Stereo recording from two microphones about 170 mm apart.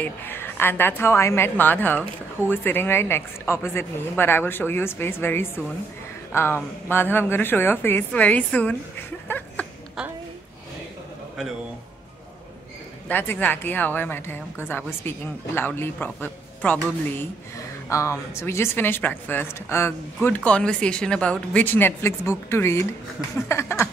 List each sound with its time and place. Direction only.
0.0 s a woman's voice: 10° left (ahead or behind)
13.1 s a woman's voice: 10° left (ahead or behind)